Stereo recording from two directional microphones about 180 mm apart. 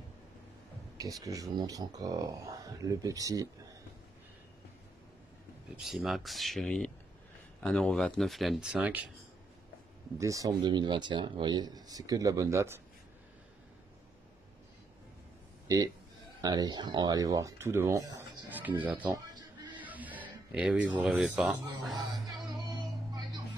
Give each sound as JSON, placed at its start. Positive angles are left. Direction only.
{"t": 0.9, "sound": "speech", "side_deg": -20}
{"t": 5.8, "sound": "speech", "side_deg": 0}
{"t": 10.1, "sound": "speech", "side_deg": -15}
{"t": 16.3, "sound": "speech", "side_deg": -20}
{"t": 19.0, "sound": "a sound", "side_deg": -20}
{"t": 19.7, "sound": "music", "side_deg": -10}